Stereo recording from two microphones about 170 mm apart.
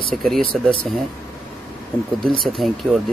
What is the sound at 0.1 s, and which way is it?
Speech, centre (ahead or behind).